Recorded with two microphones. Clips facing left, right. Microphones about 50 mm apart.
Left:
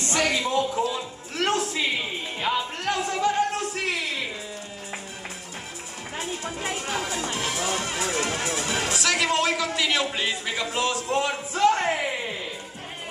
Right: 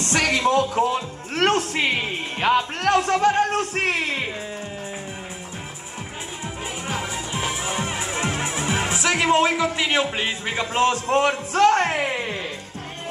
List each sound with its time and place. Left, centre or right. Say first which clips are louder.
0.0 s music: right 4 dB; right
0.8 s speech: right 5 dB; right
6.7 s music: right 1 dB; right